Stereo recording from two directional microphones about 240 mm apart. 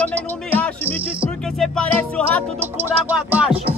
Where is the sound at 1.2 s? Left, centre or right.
Centre.